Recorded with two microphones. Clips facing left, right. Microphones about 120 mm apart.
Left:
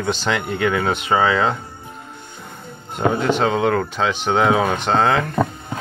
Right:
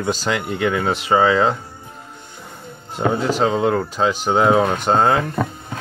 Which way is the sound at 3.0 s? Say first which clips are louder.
Even; 5° right (ahead or behind).